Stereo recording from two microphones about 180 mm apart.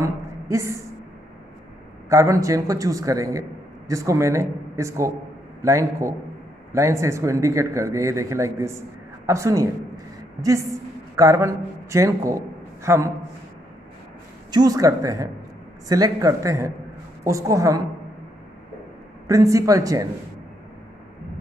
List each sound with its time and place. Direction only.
0.0 s a sound: 15° right (ahead or behind)
2.0 s a man's voice: 15° right (ahead or behind)
14.5 s a man's voice: 20° right (ahead or behind)
19.2 s speech: 20° right (ahead or behind)